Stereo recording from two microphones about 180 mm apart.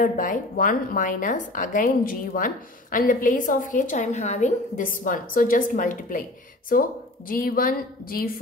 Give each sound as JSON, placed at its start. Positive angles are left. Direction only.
{"t": 0.0, "sound": "a woman's voice", "side_deg": 50}